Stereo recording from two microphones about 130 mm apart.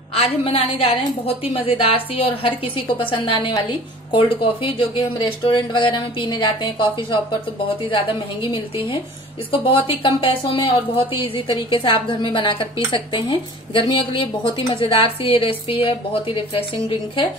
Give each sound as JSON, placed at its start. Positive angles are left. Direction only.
{"t": 0.1, "sound": "a woman's voice", "side_deg": 50}